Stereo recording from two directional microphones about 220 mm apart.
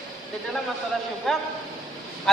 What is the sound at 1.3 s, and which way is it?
Speech, centre (ahead or behind).